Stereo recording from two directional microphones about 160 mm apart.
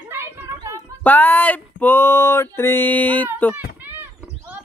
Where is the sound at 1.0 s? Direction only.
10° left (ahead or behind).